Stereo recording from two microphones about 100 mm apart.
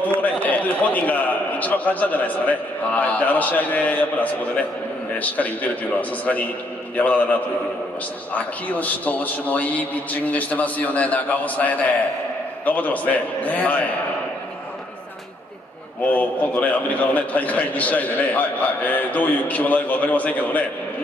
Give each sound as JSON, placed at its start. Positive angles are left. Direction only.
{"t": 0.0, "sound": "a man's voice", "side_deg": 15}
{"t": 16.1, "sound": "a man's voice", "side_deg": 15}